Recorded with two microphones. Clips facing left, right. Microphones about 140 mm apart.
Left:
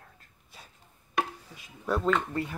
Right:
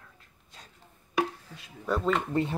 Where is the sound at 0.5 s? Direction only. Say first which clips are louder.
Even; 10° left (ahead or behind).